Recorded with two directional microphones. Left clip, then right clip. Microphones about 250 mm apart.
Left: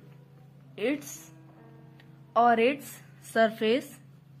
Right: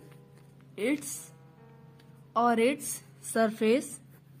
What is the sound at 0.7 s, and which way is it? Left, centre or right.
Speech, centre.